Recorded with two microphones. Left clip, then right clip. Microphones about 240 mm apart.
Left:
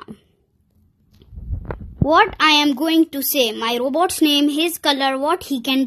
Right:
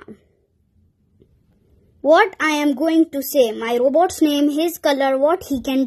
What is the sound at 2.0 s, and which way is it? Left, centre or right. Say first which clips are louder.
A woman's voice: even; centre.